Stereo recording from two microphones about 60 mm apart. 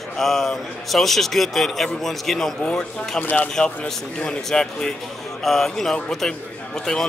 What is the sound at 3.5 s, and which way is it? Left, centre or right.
A man's voice, centre.